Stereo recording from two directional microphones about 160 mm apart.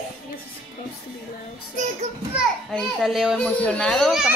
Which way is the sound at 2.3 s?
Centre (ahead or behind).